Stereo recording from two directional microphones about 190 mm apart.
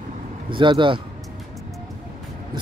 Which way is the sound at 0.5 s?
25° right (ahead or behind).